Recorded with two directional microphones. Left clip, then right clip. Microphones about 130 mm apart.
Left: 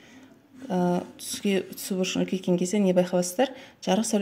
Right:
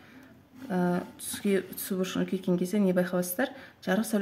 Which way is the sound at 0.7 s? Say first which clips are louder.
Left 4 dB; 10° left (ahead or behind).